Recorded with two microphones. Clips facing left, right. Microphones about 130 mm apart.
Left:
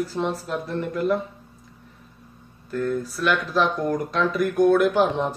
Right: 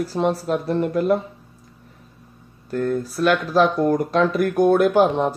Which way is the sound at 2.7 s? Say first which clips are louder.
Right 3 dB; 35° right (ahead or behind).